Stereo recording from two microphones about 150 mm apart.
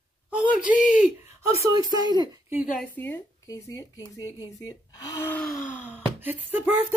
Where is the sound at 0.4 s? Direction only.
10° right (ahead or behind).